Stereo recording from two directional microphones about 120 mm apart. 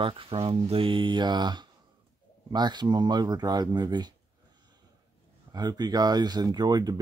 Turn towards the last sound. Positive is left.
turn(degrees=-35)  # may be behind; listen again after turning